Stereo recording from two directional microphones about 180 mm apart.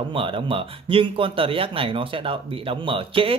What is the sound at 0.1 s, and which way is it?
Speech, 30° right (ahead or behind).